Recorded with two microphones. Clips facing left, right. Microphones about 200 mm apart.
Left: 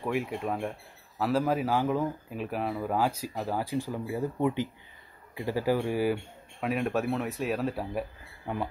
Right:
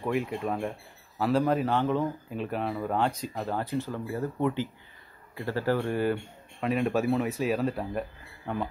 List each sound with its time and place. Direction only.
0.0 s speech: centre (ahead or behind)